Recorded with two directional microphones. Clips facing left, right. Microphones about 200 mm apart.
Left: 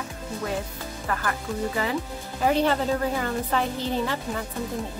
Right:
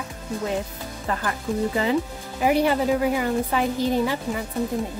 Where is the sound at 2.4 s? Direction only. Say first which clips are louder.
Right 2 dB; 10° right (ahead or behind).